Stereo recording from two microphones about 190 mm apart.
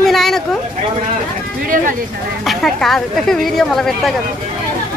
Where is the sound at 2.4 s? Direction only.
Centre (ahead or behind).